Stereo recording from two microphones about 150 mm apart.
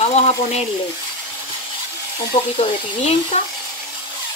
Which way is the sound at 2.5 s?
45° left (ahead or behind).